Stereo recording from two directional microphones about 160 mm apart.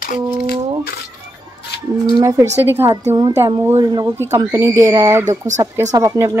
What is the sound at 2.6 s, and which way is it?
Speech, 15° right (ahead or behind).